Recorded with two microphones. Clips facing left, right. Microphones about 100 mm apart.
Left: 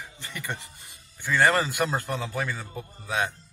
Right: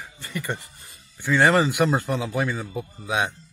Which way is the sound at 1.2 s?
5° right (ahead or behind).